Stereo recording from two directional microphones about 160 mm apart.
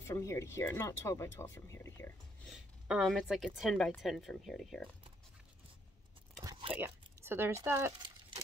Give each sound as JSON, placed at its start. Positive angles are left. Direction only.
{"t": 0.0, "sound": "speech", "side_deg": 20}
{"t": 2.4, "sound": "speech", "side_deg": 0}
{"t": 6.4, "sound": "whispering", "side_deg": -30}
{"t": 6.7, "sound": "speech", "side_deg": -15}